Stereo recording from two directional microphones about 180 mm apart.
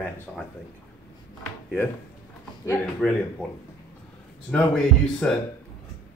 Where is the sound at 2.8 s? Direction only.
5° left (ahead or behind).